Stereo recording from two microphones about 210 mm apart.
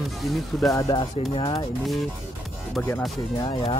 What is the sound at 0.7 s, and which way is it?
Speech, 15° left (ahead or behind).